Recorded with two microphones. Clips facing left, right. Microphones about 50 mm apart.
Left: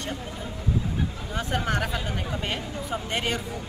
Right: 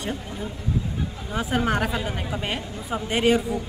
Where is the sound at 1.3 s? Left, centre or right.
Centre.